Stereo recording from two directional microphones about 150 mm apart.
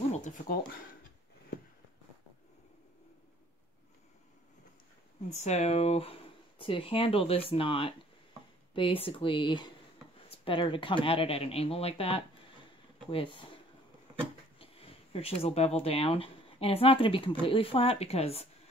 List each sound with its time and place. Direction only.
0.1 s a sound: 55° left (ahead or behind)
5.3 s speech: 50° left (ahead or behind)
15.1 s speech: 45° left (ahead or behind)